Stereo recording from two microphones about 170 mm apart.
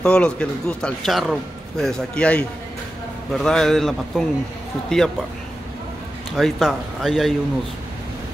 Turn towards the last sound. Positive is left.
turn(degrees=0)  # may be behind; listen again after turning